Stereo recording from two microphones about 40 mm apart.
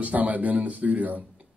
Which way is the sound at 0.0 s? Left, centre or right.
Right.